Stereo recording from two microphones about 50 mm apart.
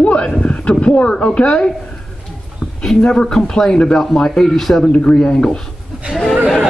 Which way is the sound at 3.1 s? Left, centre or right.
Centre.